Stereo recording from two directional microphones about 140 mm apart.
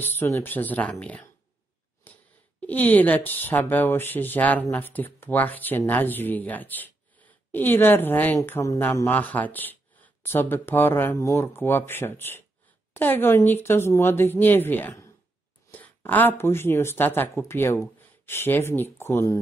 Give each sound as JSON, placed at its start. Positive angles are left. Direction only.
{"t": 0.0, "sound": "a woman's voice", "side_deg": 15}
{"t": 2.1, "sound": "a sound", "side_deg": 10}
{"t": 2.6, "sound": "a woman's voice", "side_deg": 15}